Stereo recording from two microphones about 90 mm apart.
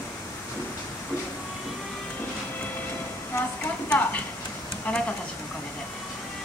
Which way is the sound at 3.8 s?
15° left (ahead or behind).